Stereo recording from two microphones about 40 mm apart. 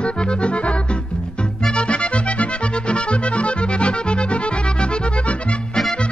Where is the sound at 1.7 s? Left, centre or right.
Left.